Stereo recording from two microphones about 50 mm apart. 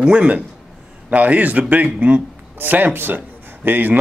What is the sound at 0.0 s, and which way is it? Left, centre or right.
A man's voice, right.